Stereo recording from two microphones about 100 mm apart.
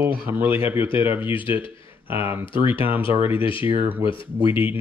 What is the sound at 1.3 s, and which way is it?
Speech, 60° left (ahead or behind).